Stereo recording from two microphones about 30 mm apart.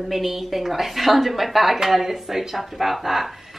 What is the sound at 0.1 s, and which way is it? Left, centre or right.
A woman's voice, centre.